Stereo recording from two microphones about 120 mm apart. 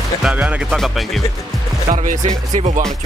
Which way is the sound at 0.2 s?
10° right (ahead or behind).